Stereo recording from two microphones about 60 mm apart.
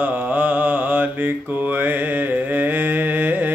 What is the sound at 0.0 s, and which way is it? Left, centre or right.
Mantra, right.